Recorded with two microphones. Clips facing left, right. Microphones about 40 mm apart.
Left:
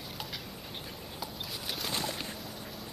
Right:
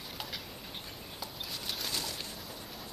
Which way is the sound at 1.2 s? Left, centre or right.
Centre.